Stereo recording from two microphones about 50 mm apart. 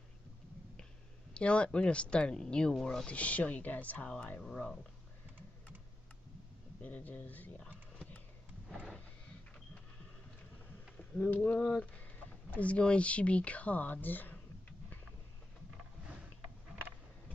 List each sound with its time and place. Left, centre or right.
1.3 s speech: left
3.1 s speech: left
6.8 s speech: left
11.0 s speech: left
11.8 s a sound: left
12.5 s speech: left
16.0 s mechanisms: centre